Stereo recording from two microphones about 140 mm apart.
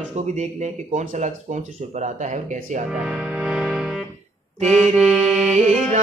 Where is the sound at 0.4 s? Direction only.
55° right (ahead or behind).